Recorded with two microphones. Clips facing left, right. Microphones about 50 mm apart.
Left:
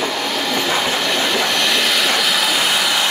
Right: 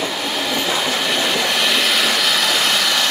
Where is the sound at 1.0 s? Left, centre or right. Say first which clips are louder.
Left 1 dB; centre.